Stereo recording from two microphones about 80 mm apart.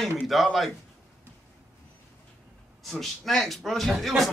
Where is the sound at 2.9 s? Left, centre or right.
Centre.